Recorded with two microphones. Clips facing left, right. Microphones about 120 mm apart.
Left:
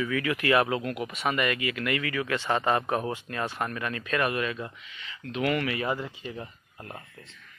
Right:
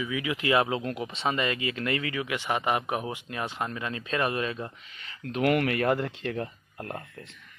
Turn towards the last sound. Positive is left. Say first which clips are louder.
# right 5 dB
turn(degrees=-55)  # may be behind; listen again after turning